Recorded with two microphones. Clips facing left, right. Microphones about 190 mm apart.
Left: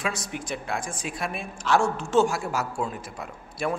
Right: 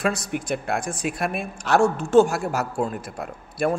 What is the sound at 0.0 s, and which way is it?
A man's voice, 60° right (ahead or behind).